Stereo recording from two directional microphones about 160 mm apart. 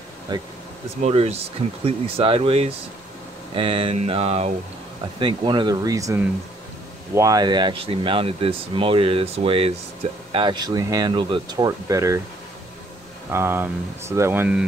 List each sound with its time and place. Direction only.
0.3 s speech: 25° right (ahead or behind)
1.0 s speech: 40° right (ahead or behind)
5.2 s speech: 30° right (ahead or behind)
13.3 s speech: 15° right (ahead or behind)